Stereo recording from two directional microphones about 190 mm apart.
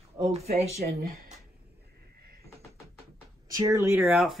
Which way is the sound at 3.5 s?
15° right (ahead or behind).